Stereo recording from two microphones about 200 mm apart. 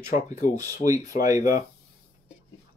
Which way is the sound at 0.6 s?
15° right (ahead or behind).